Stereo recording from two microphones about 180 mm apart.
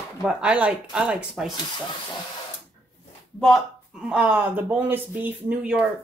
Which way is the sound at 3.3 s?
5° left (ahead or behind).